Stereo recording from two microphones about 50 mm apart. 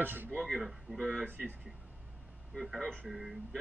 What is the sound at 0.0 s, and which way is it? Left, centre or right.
Speech, right.